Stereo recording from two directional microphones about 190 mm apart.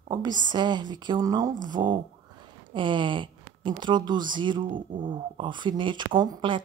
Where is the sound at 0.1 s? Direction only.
20° right (ahead or behind).